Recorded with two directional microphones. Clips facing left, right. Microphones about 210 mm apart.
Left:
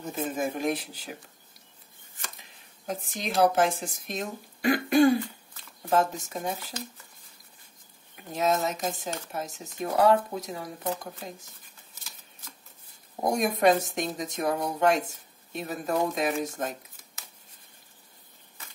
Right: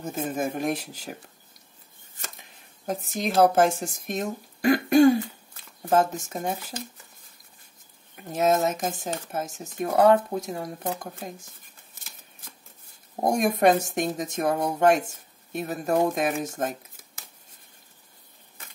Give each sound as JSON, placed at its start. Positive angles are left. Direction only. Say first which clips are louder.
{"t": 0.0, "sound": "speech", "louder": "right 2 dB", "side_deg": -45}
{"t": 2.9, "sound": "speech", "louder": "right 5 dB", "side_deg": -45}
{"t": 8.3, "sound": "speech", "louder": "right 4 dB", "side_deg": -50}
{"t": 13.2, "sound": "speech", "louder": "right 2 dB", "side_deg": -50}